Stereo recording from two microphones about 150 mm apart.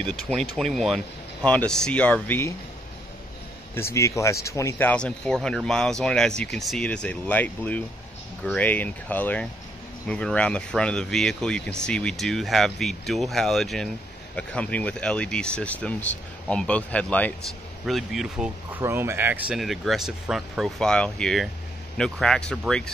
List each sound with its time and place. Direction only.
0.1 s speech: 5° left (ahead or behind)
3.7 s speech: 20° left (ahead or behind)
17.8 s speech: centre (ahead or behind)
18.8 s speech: 15° right (ahead or behind); by 22.8 s 5° left (ahead or behind)